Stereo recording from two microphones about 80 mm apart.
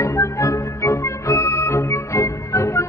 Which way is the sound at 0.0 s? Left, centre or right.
Left.